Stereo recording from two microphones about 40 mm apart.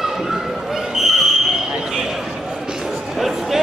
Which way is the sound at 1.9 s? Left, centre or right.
Centre.